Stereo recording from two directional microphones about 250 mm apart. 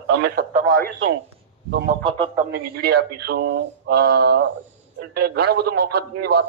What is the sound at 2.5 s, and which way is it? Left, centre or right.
A man's voice, right.